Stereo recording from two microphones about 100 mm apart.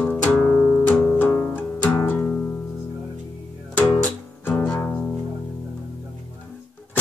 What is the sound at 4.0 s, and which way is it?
Music, 20° left (ahead or behind).